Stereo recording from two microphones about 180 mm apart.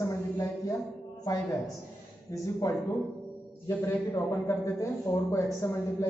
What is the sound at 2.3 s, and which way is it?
A man's voice, 20° left (ahead or behind).